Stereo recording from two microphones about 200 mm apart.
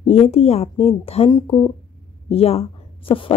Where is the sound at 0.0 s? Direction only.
30° left (ahead or behind).